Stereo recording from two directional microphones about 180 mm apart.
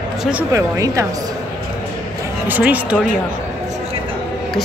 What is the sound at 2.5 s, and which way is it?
Speech, 10° right (ahead or behind).